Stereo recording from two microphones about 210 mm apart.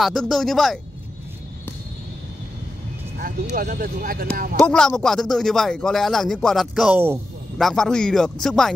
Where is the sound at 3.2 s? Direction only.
45° right (ahead or behind).